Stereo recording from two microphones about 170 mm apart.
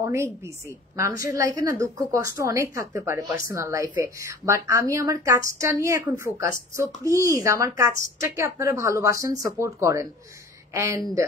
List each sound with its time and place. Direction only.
0.0 s a woman's voice: 15° right (ahead or behind)